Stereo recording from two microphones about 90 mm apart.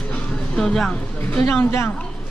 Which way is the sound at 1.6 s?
30° left (ahead or behind).